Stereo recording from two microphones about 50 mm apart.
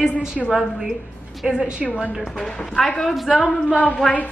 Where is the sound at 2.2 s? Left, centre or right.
Centre.